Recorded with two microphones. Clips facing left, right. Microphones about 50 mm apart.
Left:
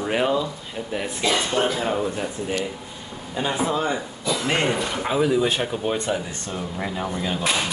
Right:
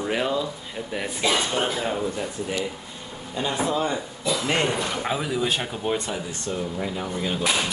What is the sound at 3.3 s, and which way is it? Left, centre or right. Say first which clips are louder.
Speech: left 1 dB; centre.